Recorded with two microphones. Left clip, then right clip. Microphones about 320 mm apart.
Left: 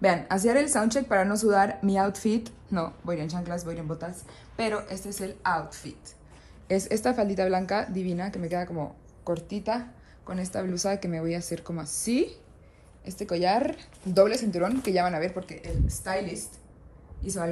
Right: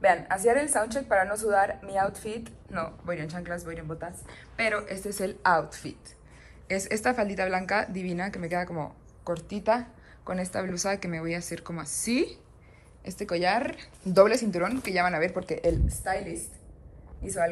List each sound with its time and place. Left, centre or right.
0.0 s a woman's voice: left; by 16.4 s centre